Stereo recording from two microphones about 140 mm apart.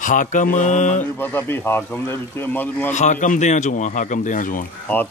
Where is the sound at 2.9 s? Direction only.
60° left (ahead or behind).